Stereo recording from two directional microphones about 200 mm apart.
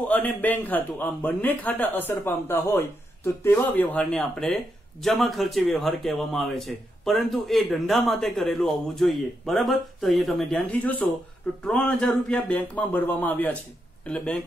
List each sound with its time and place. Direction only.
0.1 s a man's voice: 10° left (ahead or behind)